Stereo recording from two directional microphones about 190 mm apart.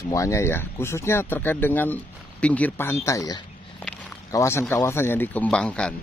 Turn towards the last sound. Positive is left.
turn(degrees=5)  # may be behind; listen again after turning